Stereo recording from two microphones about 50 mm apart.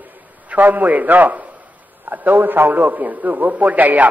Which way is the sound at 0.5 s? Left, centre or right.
Right.